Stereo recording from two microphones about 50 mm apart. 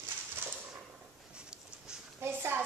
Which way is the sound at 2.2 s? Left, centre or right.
Right.